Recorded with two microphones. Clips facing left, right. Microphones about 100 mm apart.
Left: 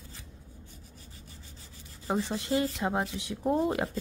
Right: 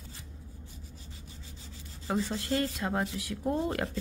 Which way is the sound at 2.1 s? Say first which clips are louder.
Left 1 dB; 20° left (ahead or behind).